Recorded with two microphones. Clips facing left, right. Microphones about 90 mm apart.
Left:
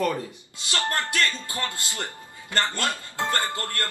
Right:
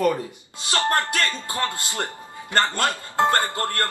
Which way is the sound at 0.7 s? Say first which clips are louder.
Right 5 dB; 25° right (ahead or behind).